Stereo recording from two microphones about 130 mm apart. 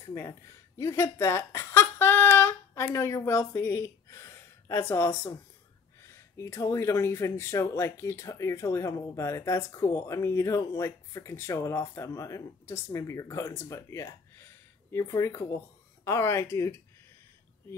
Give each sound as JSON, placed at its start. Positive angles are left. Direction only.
{"t": 0.0, "sound": "speech", "side_deg": 20}